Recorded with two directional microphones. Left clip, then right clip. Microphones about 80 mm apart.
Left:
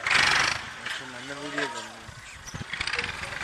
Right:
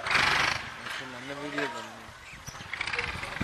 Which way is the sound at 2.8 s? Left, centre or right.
Left.